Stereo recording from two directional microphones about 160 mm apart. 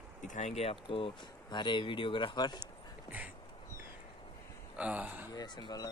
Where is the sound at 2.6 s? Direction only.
10° right (ahead or behind).